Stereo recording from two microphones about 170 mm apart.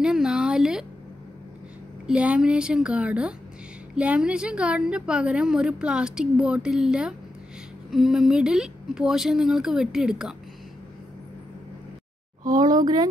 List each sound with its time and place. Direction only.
0.0 s a sound: 5° right (ahead or behind)
2.0 s a woman's voice: 5° right (ahead or behind)
12.4 s speech: 25° right (ahead or behind)